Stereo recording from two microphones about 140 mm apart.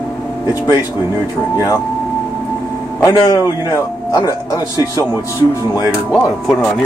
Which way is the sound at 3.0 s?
25° left (ahead or behind).